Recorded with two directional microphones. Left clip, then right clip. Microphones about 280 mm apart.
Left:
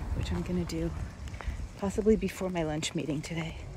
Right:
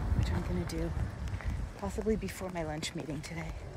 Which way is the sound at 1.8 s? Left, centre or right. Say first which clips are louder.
Left 7 dB; centre.